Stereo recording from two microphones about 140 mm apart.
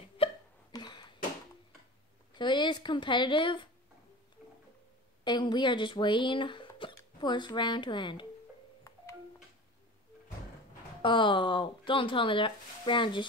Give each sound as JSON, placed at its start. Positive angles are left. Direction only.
{"t": 0.2, "sound": "hiccup", "side_deg": 30}
{"t": 2.3, "sound": "speech", "side_deg": 35}
{"t": 4.4, "sound": "music", "side_deg": -10}
{"t": 5.2, "sound": "speech", "side_deg": 30}
{"t": 11.0, "sound": "speech", "side_deg": 35}